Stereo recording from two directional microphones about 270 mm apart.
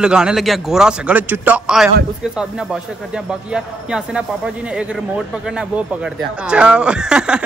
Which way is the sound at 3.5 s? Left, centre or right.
Centre.